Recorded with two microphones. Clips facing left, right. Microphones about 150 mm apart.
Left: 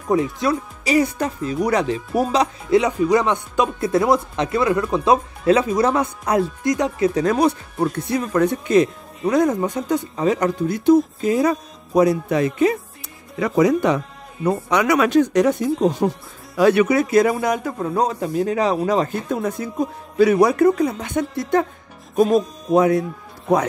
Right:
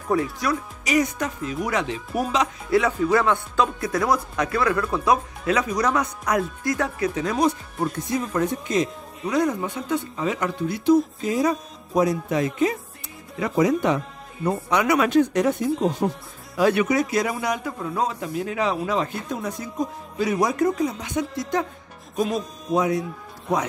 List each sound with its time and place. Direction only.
0.1 s speech: 25° left (ahead or behind)
2.7 s speech: 20° left (ahead or behind)
6.7 s speech: 20° left (ahead or behind)
8.0 s speech: 70° left (ahead or behind)
9.2 s speech: 45° left (ahead or behind)
11.2 s speech: 60° left (ahead or behind)
13.4 s speech: 90° left; by 19.7 s 55° left (ahead or behind)
20.2 s speech: 65° left (ahead or behind)